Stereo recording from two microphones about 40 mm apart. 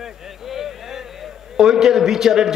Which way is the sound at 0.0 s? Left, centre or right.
Centre.